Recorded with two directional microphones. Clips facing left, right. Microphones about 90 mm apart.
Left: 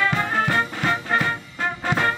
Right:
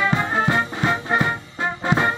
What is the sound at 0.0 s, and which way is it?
Music, 20° right (ahead or behind).